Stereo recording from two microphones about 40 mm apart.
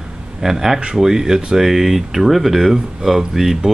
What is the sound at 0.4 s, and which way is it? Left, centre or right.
Speech, centre.